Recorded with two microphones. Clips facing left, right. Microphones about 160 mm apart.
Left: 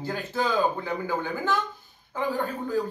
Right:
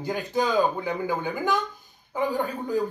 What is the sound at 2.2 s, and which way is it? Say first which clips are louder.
Speech: right 2 dB; 15° right (ahead or behind).